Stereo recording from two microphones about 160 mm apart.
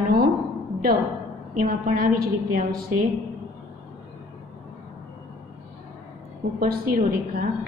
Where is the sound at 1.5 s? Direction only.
60° right (ahead or behind).